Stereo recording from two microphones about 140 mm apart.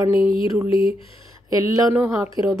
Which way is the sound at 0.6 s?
40° left (ahead or behind).